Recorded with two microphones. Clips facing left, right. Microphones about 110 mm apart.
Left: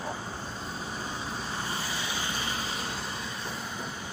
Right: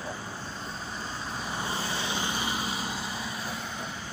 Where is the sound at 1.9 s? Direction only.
25° right (ahead or behind).